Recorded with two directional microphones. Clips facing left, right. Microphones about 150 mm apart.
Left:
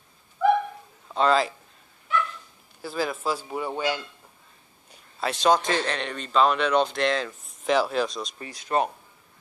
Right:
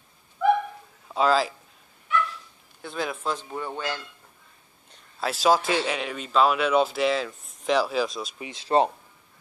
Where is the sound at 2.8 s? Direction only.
Centre (ahead or behind).